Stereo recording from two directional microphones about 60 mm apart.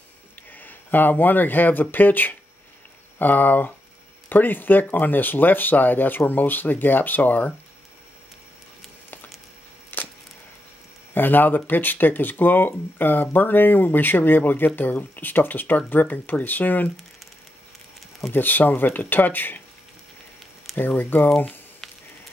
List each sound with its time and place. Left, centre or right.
0.4 s speech: left
9.9 s a sound: left
11.1 s speech: left
18.3 s speech: left
20.7 s speech: left
21.8 s a sound: centre